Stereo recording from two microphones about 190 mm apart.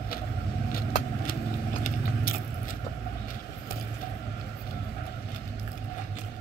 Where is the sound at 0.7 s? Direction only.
50° left (ahead or behind).